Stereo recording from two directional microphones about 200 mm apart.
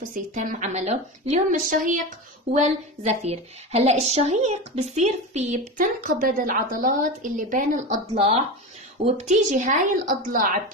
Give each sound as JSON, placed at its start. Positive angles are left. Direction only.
{"t": 0.0, "sound": "a woman's voice", "side_deg": -40}